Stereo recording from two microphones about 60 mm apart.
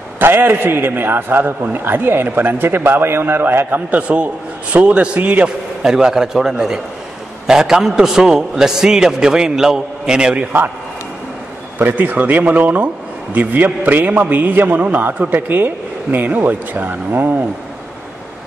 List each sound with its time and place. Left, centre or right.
0.2 s a man's voice: right
5.8 s a man's voice: centre
11.8 s a man's voice: right